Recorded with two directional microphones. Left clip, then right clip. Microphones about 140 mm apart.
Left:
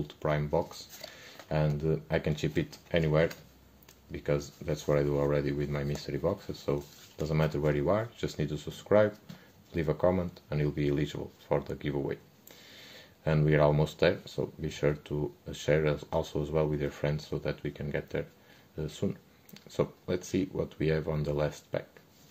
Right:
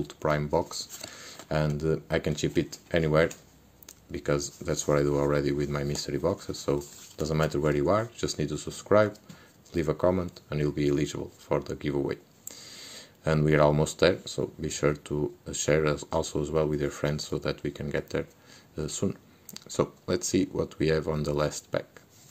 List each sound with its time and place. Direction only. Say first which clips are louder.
0.0 s speech: right 4 dB; 45° right (ahead or behind)